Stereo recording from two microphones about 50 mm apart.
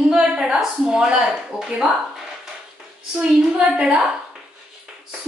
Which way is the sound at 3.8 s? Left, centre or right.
Centre.